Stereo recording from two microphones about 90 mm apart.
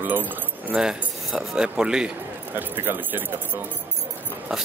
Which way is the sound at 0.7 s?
5° right (ahead or behind).